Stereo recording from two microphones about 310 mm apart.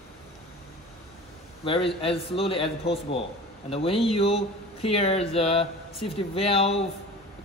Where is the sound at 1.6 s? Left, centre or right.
Centre.